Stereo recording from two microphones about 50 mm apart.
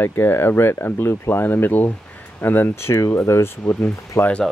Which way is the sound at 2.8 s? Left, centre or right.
Left.